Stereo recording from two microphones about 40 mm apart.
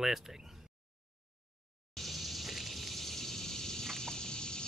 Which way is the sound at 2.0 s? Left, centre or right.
Centre.